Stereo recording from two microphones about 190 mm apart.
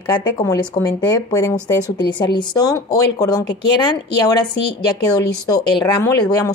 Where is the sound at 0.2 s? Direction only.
20° left (ahead or behind).